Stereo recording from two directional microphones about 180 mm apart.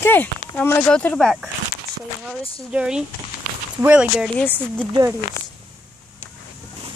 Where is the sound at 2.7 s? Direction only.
5° right (ahead or behind).